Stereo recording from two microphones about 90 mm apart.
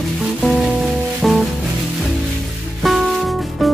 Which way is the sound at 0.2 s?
Centre (ahead or behind).